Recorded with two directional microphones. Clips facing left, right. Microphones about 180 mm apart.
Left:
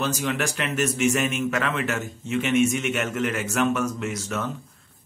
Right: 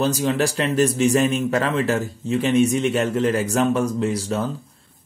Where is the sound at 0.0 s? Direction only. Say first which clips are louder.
Right 6 dB; 35° right (ahead or behind).